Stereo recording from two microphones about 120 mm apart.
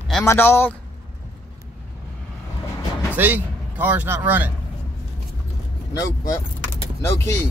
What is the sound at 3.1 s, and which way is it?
Speech, 15° right (ahead or behind).